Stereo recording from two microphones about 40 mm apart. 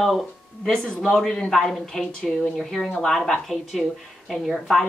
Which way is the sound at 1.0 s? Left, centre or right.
Centre.